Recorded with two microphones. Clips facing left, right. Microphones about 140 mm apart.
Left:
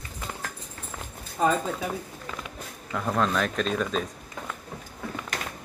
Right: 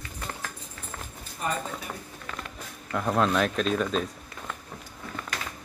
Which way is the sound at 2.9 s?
Centre (ahead or behind).